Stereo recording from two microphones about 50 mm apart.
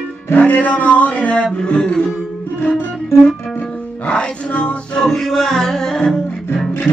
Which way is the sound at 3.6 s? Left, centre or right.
Left.